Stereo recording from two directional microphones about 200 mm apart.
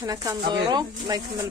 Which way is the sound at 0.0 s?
15° right (ahead or behind).